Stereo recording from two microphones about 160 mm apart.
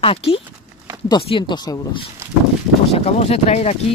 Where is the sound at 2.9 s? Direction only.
40° left (ahead or behind).